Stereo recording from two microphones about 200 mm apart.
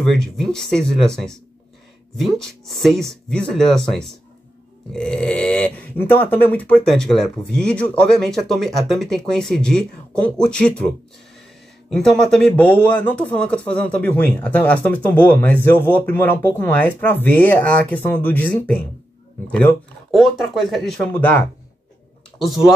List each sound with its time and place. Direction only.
0.0 s speech: 5° left (ahead or behind)
11.9 s speech: 5° left (ahead or behind)
22.4 s speech: centre (ahead or behind)